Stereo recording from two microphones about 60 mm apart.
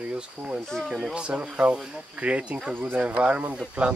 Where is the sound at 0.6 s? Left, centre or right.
Centre.